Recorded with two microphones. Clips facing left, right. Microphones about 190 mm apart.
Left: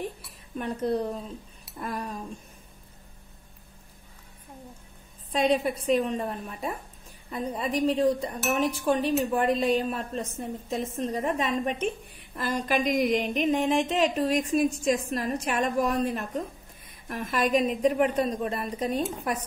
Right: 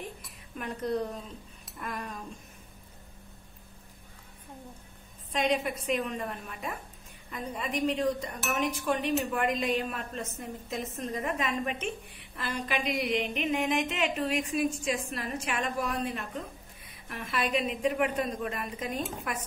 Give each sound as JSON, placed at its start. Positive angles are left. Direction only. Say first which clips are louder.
{"t": 0.6, "sound": "speech", "louder": "left 4 dB", "side_deg": 30}
{"t": 5.3, "sound": "speech", "louder": "left 4 dB", "side_deg": 35}